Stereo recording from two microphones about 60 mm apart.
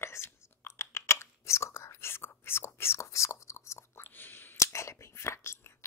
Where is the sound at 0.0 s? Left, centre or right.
Left.